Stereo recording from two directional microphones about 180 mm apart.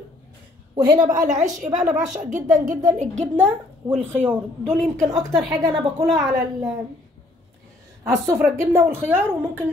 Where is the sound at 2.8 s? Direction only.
40° right (ahead or behind).